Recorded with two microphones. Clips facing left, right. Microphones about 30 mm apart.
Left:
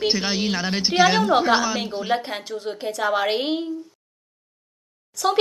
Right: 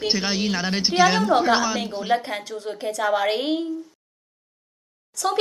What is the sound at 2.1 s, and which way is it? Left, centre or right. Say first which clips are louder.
A woman's voice: right 1 dB; centre.